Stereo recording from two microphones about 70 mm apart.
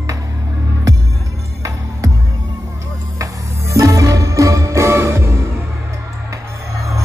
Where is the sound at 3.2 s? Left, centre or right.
Right.